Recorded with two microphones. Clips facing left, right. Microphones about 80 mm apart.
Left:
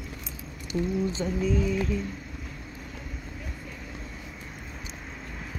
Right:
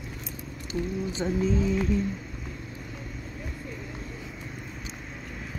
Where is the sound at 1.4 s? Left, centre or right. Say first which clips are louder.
Right 1 dB; right.